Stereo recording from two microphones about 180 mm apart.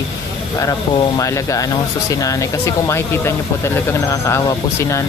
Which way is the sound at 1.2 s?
20° left (ahead or behind).